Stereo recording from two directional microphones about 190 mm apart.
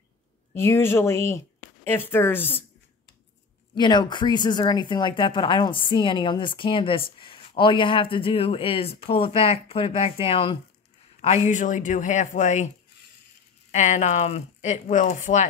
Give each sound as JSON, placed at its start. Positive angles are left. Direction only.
{"t": 0.6, "sound": "speech", "side_deg": 15}
{"t": 3.7, "sound": "speech", "side_deg": 25}
{"t": 11.4, "sound": "speech", "side_deg": 40}
{"t": 13.7, "sound": "speech", "side_deg": 40}